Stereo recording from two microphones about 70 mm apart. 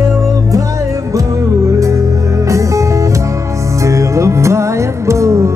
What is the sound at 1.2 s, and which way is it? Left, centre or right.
Music, right.